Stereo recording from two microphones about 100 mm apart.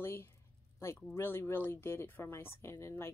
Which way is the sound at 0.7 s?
25° left (ahead or behind).